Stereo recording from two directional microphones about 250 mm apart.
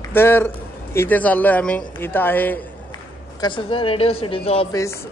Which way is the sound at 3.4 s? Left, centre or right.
Centre.